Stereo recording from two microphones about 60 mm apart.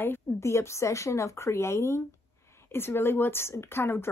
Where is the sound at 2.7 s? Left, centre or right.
Left.